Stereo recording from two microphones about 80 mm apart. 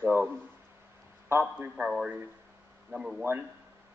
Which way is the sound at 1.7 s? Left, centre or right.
Centre.